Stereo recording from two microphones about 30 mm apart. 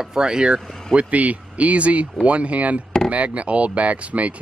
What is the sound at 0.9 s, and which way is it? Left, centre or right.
Speech, right.